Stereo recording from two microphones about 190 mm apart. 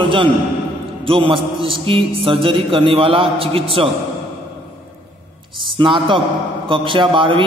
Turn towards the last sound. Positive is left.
turn(degrees=-25)  # may be behind; listen again after turning